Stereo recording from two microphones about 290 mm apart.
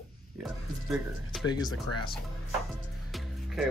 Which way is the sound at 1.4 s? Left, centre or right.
Centre.